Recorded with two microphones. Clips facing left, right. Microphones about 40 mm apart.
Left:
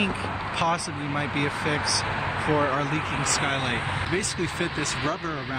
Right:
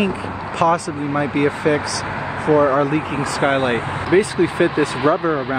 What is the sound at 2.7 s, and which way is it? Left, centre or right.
Speech, centre.